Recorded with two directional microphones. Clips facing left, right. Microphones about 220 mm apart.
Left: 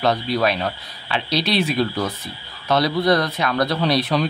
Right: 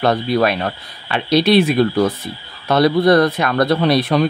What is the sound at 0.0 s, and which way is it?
Speech, 50° right (ahead or behind).